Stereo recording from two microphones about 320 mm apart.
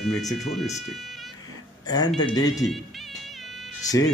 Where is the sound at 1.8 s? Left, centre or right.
Centre.